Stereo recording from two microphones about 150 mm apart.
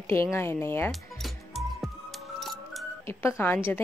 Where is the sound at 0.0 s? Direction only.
15° left (ahead or behind).